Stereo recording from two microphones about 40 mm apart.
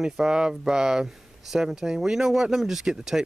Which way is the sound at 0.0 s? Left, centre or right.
Centre.